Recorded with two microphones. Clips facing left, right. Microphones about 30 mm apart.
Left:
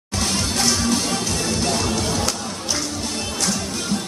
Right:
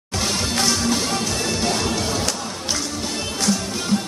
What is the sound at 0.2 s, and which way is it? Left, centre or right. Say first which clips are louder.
Music: even; centre.